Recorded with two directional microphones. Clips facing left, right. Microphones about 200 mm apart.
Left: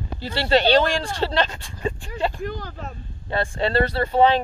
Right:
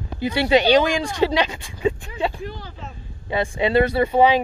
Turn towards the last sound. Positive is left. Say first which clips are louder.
# right 2 dB
turn(degrees=-10)  # may be behind; listen again after turning